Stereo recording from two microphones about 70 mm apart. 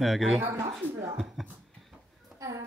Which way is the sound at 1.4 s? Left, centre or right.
Centre.